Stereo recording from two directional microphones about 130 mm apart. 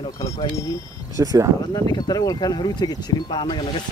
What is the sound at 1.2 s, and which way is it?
Speech, 30° right (ahead or behind).